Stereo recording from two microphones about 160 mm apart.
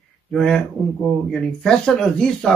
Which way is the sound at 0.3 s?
5° left (ahead or behind).